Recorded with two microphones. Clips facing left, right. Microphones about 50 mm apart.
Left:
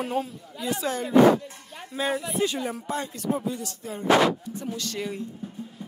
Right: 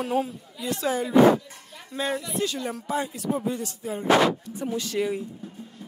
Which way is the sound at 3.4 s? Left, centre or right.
Right.